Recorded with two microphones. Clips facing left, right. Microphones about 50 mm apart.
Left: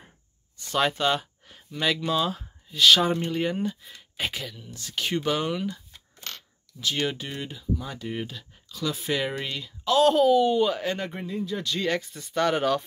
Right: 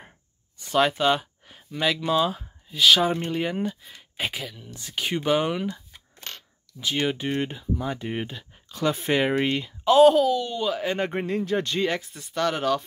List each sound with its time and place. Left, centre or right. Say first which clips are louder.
0.7 s speech: right 3 dB; centre
4.7 s speech: even; centre
6.8 s speech: right 2 dB; centre
7.2 s speech: right 5 dB; right
8.6 s speech: right 5 dB; right
10.0 s speech: right 1 dB; centre
11.0 s speech: right 6 dB; right
11.2 s speech: right 4 dB; right
11.5 s speech: right 6 dB; right
12.0 s speech: left 1 dB; centre